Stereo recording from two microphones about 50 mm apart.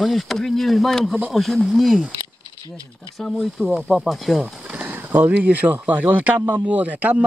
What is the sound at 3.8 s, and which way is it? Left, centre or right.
Speech, centre.